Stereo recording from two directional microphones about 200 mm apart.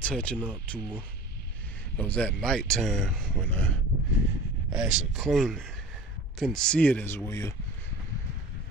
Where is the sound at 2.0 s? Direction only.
5° left (ahead or behind).